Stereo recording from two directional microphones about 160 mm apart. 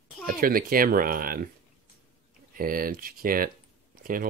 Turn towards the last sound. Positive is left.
turn(degrees=-60)  # may be behind; listen again after turning